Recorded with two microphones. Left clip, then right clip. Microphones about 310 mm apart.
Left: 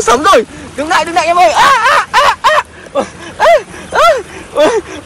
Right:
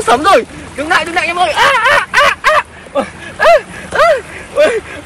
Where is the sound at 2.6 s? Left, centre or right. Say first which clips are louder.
Left 1 dB; centre.